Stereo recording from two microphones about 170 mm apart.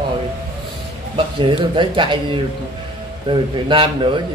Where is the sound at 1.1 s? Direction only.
30° right (ahead or behind).